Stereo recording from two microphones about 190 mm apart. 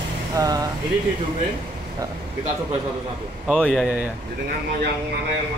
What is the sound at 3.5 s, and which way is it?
Speech, centre (ahead or behind).